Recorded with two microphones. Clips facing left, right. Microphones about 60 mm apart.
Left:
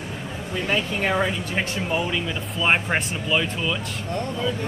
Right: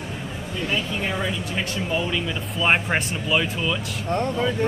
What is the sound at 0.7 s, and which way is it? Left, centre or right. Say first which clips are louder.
Speech: left 3 dB; left.